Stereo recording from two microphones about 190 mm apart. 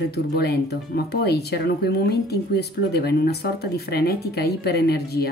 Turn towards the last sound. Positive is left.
turn(degrees=55)  # may be behind; listen again after turning